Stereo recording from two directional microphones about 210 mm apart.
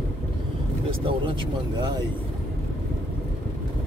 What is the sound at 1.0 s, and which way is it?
Vehicle, 25° right (ahead or behind).